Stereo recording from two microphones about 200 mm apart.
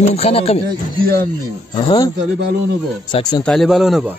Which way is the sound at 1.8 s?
25° left (ahead or behind).